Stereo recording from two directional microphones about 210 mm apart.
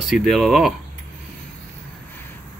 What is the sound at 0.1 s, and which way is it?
Speech, centre (ahead or behind).